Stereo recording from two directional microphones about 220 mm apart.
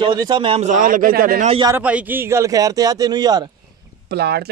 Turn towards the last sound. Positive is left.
turn(degrees=-45)  # may be behind; listen again after turning